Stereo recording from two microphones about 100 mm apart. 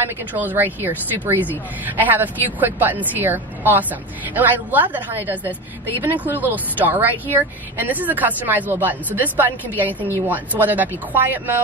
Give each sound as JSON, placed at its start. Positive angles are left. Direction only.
{"t": 0.3, "sound": "speech", "side_deg": -20}